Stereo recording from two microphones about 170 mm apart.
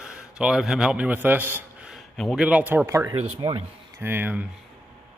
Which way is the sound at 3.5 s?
30° right (ahead or behind).